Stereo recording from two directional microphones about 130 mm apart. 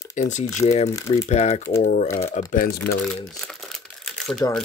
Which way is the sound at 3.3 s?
5° left (ahead or behind).